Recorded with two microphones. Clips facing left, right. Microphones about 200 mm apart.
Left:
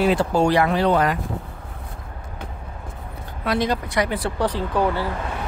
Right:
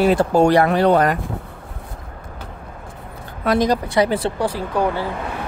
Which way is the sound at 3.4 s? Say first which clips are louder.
Right 5 dB; 45° right (ahead or behind).